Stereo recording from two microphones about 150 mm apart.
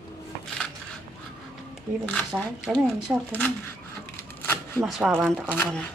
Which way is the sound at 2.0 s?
5° left (ahead or behind).